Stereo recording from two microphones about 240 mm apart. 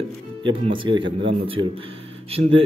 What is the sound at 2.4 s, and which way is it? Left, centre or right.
Speech, right.